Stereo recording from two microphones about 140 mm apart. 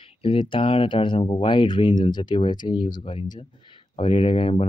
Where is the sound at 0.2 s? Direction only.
40° left (ahead or behind).